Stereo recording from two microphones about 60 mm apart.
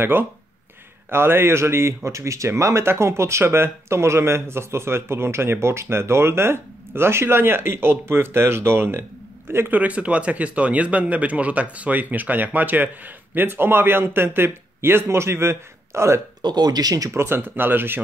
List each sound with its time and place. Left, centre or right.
0.0 s speech: right
2.0 s speech: right
9.7 s speech: right
16.6 s speech: right
17.1 s speech: right